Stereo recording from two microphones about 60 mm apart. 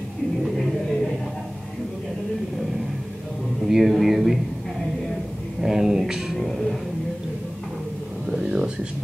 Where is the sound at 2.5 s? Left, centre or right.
Centre.